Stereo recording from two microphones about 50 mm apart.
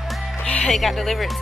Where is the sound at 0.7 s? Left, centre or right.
Centre.